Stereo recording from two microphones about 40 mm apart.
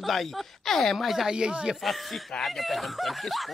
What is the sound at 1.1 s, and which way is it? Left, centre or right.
Speech, centre.